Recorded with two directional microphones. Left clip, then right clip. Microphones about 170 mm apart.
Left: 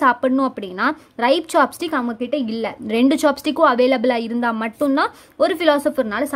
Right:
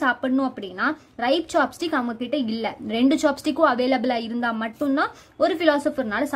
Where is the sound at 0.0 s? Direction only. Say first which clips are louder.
Left 6 dB; 30° left (ahead or behind).